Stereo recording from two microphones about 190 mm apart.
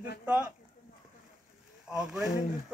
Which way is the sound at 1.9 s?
Centre (ahead or behind).